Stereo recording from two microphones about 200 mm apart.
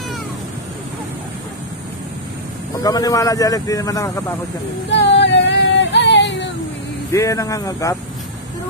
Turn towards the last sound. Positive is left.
turn(degrees=15)  # may be behind; listen again after turning